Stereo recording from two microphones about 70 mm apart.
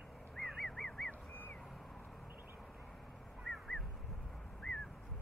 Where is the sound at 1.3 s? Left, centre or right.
Left.